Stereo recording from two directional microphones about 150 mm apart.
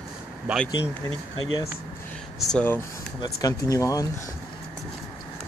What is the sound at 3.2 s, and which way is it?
Speech, 25° left (ahead or behind).